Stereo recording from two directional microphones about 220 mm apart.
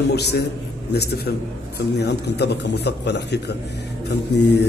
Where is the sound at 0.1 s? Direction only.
50° left (ahead or behind).